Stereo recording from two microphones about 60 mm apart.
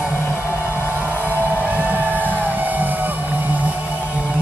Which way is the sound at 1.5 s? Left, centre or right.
Right.